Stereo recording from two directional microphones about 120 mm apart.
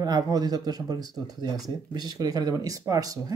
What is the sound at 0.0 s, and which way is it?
Speech, 35° right (ahead or behind).